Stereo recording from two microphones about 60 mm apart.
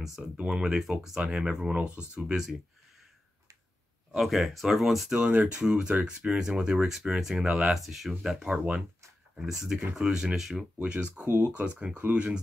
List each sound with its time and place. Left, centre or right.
0.4 s speech: centre
4.1 s speech: centre
5.1 s speech: right; by 8.4 s centre
8.4 s speech: centre
10.8 s speech: centre